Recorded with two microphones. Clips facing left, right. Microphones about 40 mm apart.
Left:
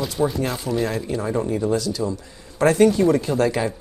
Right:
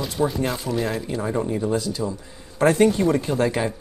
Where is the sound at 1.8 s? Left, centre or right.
Right.